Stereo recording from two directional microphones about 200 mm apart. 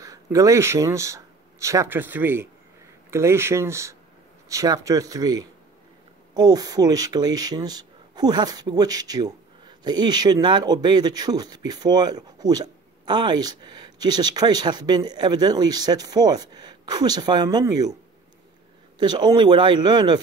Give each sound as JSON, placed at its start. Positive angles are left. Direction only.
{"t": 0.0, "sound": "speech", "side_deg": -15}
{"t": 18.9, "sound": "speech", "side_deg": -20}